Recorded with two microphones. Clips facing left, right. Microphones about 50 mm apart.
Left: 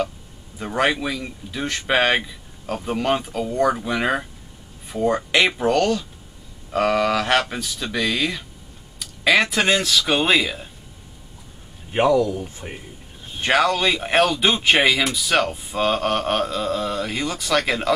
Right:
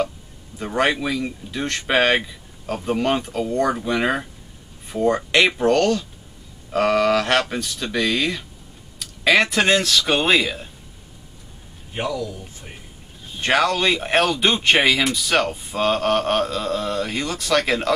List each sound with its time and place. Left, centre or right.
0.6 s speech: centre
11.9 s speech: left
13.4 s speech: centre